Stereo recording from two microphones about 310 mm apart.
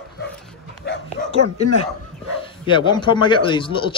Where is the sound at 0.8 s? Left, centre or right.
Left.